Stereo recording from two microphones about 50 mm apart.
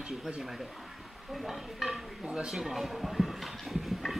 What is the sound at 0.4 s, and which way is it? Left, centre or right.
Speech, centre.